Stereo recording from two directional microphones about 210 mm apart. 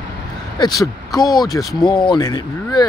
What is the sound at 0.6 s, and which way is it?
Speech, 15° left (ahead or behind).